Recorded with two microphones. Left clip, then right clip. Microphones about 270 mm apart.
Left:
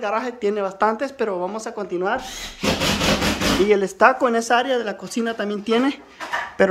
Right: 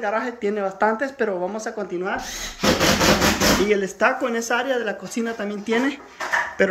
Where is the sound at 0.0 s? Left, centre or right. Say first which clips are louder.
Left 1 dB; centre.